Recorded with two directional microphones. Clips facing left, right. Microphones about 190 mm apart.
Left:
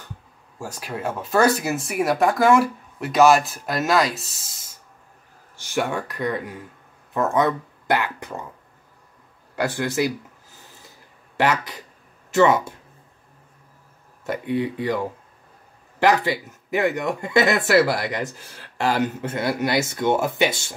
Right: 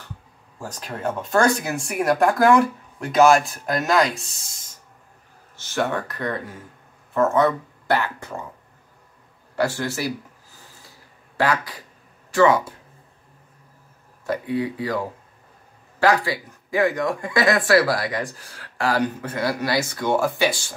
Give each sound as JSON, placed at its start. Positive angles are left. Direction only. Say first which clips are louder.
{"t": 0.6, "sound": "speech", "louder": "left 1 dB", "side_deg": 10}
{"t": 5.6, "sound": "speech", "louder": "even", "side_deg": 15}
{"t": 9.6, "sound": "speech", "louder": "left 1 dB", "side_deg": 15}
{"t": 11.3, "sound": "speech", "louder": "left 1 dB", "side_deg": 20}
{"t": 14.2, "sound": "speech", "louder": "even", "side_deg": 20}
{"t": 16.0, "sound": "speech", "louder": "left 1 dB", "side_deg": 20}